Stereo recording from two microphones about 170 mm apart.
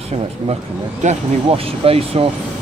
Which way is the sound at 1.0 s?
40° right (ahead or behind).